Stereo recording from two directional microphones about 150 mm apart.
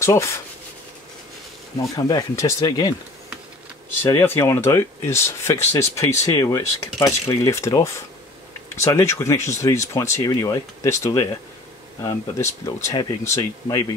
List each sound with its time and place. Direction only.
0.0 s speech: 20° left (ahead or behind)
1.8 s speech: 25° left (ahead or behind)
4.0 s speech: 15° left (ahead or behind)